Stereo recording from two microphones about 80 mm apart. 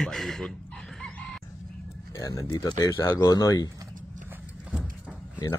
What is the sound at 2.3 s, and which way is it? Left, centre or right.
Speech, left.